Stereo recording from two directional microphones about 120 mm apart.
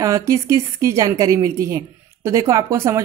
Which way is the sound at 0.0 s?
25° right (ahead or behind).